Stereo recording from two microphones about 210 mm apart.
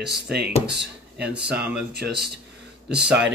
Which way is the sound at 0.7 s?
50° right (ahead or behind).